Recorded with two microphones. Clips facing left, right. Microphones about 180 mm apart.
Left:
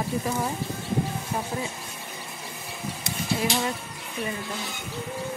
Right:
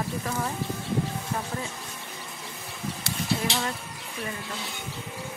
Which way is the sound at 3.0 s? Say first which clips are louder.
Left 2 dB; 15° left (ahead or behind).